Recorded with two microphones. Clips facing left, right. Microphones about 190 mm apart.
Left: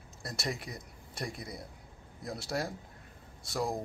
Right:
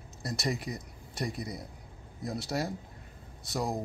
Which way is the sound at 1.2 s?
50° left (ahead or behind).